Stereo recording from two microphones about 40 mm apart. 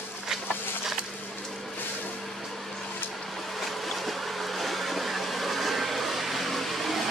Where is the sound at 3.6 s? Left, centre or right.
Centre.